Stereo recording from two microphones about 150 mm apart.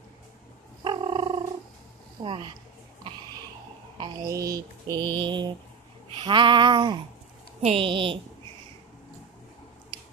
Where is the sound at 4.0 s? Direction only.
25° right (ahead or behind).